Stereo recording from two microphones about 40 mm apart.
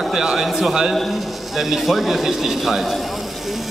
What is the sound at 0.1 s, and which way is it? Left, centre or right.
A man's voice, centre.